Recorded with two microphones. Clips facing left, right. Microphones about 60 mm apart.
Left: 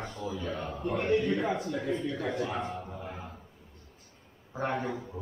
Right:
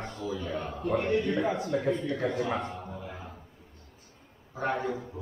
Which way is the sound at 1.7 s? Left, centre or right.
Right.